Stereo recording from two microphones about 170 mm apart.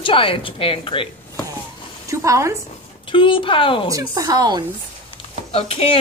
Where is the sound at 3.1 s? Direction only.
30° left (ahead or behind).